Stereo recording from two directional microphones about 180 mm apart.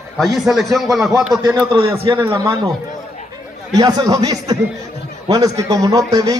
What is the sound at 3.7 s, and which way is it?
A man's voice, 20° right (ahead or behind).